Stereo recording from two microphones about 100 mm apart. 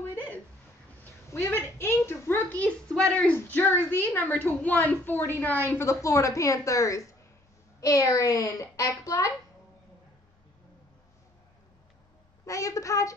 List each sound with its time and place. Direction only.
0.1 s a sound: 20° left (ahead or behind)
3.3 s a woman's voice: 20° left (ahead or behind)
12.4 s a child's voice: 35° left (ahead or behind)